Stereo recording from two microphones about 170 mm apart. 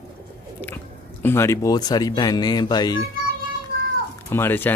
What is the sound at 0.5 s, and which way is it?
Speech, 10° left (ahead or behind).